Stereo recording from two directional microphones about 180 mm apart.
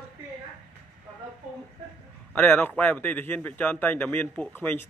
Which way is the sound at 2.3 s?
10° left (ahead or behind).